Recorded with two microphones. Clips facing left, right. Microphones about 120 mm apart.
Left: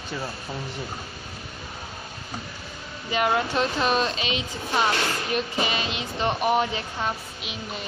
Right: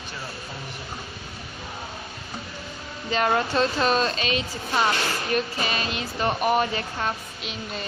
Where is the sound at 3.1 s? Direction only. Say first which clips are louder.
Right 1 dB; 10° left (ahead or behind).